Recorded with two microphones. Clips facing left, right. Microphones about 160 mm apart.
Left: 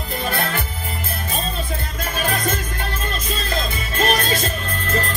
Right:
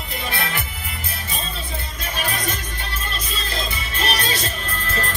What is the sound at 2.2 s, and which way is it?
Music, 50° left (ahead or behind).